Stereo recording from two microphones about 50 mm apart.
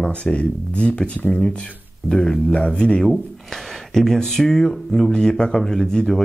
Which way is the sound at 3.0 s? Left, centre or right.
Centre.